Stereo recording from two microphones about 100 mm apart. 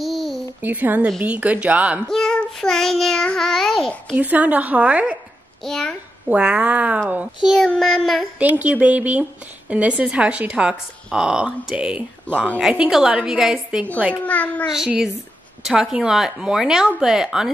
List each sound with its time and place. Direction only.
0.0 s a sound: centre (ahead or behind)
0.6 s a woman's voice: 20° right (ahead or behind)
2.0 s child singing: 5° left (ahead or behind)
4.2 s a woman's voice: 15° right (ahead or behind)
5.6 s child singing: 5° left (ahead or behind)
6.2 s a woman's voice: 10° right (ahead or behind)
7.4 s child singing: 5° left (ahead or behind)
8.4 s a woman's voice: 15° right (ahead or behind)
14.1 s a child's voice: 15° left (ahead or behind)
15.6 s child singing: 10° right (ahead or behind)